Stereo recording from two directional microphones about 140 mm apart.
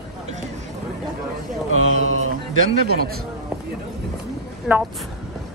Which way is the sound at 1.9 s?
55° right (ahead or behind).